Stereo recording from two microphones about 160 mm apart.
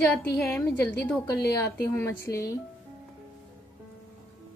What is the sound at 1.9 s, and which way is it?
Speech, 20° left (ahead or behind).